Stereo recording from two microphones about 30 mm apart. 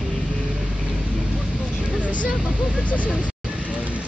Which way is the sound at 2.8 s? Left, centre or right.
Left.